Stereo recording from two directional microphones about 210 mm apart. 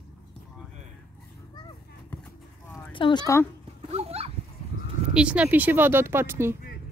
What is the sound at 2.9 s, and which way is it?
Speech, 20° left (ahead or behind).